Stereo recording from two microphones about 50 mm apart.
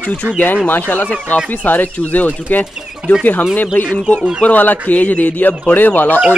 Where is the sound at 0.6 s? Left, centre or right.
Left.